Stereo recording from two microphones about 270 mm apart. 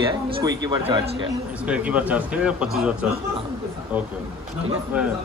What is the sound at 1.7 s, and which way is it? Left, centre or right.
A man's voice, centre.